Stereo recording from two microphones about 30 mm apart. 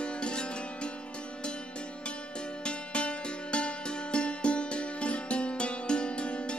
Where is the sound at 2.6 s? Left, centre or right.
Left.